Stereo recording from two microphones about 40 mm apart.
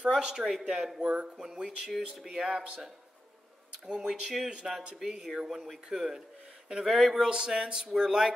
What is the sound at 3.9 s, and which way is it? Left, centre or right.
Speech, centre.